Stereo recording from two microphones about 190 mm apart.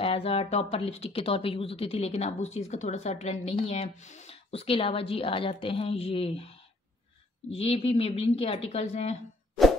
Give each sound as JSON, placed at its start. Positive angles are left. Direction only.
{"t": 0.0, "sound": "speech", "side_deg": 30}
{"t": 7.5, "sound": "speech", "side_deg": 30}